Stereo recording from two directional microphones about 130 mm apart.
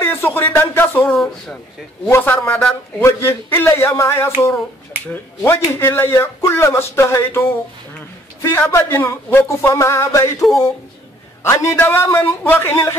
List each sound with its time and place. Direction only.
0.0 s speech: 15° left (ahead or behind)
1.1 s speech: 5° left (ahead or behind)
2.0 s speech: 15° left (ahead or behind)
11.4 s speech: 20° left (ahead or behind)